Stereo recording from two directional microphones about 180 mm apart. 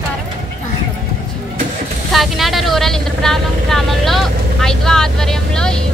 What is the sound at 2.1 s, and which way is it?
Vehicle, centre (ahead or behind).